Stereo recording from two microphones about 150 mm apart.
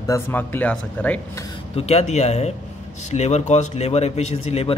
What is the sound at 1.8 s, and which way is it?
A man's voice, 45° left (ahead or behind).